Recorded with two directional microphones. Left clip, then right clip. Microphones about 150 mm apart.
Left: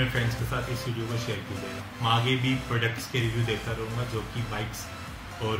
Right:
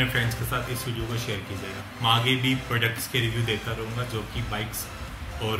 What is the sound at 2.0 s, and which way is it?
Speech, 5° right (ahead or behind).